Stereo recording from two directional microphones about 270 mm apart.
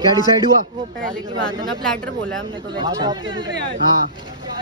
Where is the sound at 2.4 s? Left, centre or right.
Centre.